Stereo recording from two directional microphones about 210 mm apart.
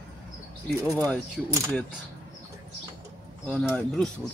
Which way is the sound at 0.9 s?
10° left (ahead or behind).